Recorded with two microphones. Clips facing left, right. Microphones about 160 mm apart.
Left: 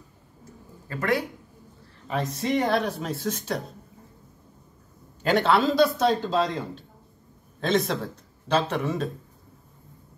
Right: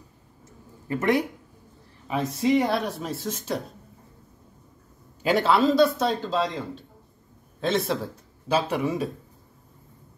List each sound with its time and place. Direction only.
0.8 s speech: 20° right (ahead or behind)
2.0 s a man's voice: 5° right (ahead or behind)
5.2 s a man's voice: 5° right (ahead or behind)